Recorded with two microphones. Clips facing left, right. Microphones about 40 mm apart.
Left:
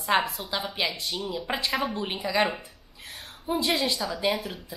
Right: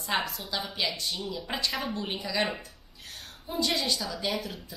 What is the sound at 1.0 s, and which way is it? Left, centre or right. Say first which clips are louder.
Speech: left 2 dB; centre.